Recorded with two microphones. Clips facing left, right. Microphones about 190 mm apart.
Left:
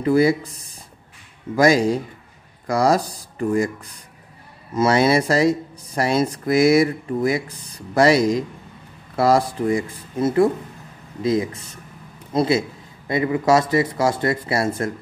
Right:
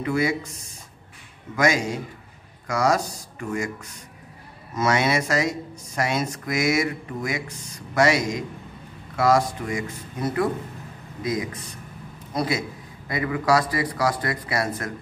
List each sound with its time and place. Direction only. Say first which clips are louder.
0.0 s speech: left 7 dB; 35° left (ahead or behind)